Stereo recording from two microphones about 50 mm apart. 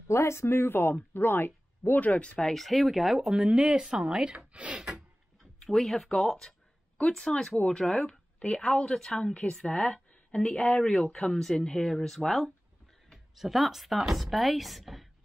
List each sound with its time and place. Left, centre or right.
0.1 s speech: left
1.9 s speech: left
2.3 s speech: centre
3.3 s speech: centre
4.5 s speech: right
4.7 s speech: centre
5.6 s speech: centre
8.1 s a sound: centre
8.5 s speech: centre
9.4 s a woman's voice: centre; by 10.8 s left
10.8 s speech: centre